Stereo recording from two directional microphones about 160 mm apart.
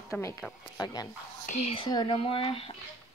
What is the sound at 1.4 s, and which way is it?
Whispering, 50° left (ahead or behind).